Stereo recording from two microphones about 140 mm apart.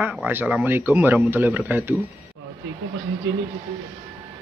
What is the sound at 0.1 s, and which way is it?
Speech, 10° right (ahead or behind).